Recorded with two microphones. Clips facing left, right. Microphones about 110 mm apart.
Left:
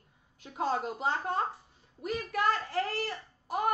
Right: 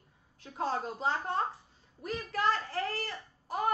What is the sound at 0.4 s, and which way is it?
Speech, 15° left (ahead or behind).